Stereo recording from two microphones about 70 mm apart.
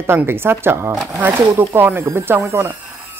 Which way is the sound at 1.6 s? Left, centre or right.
Right.